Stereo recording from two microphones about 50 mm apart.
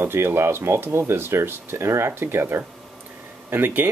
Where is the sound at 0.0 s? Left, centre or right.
Right.